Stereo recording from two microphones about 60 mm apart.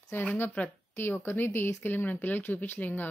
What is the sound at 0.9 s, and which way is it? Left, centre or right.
A woman's voice, left.